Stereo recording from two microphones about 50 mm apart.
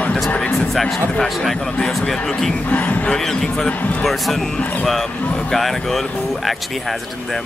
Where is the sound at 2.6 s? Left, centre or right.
Left.